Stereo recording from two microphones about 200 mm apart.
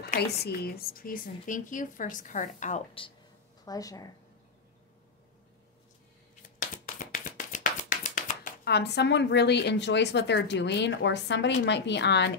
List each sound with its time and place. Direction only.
0.0 s speech: 50° left (ahead or behind); by 3.1 s 30° left (ahead or behind)
3.6 s speech: 20° left (ahead or behind)
6.6 s a sound: 40° left (ahead or behind); by 12.3 s 60° left (ahead or behind)